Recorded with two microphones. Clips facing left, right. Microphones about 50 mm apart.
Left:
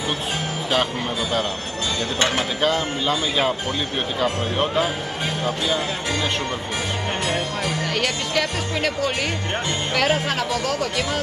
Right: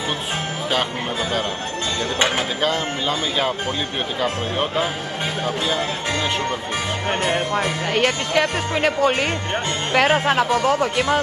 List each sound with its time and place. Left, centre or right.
2.1 s speech: centre
2.6 s speech: centre
7.1 s speech: right